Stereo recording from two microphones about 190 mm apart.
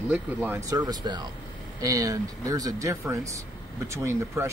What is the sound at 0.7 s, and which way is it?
Speech, 20° right (ahead or behind).